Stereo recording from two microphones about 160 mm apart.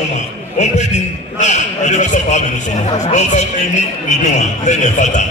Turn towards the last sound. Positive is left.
turn(degrees=50)  # may be behind; listen again after turning